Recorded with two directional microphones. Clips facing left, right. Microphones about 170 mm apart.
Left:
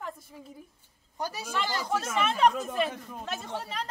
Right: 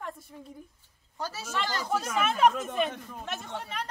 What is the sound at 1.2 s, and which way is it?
Speech, 15° left (ahead or behind).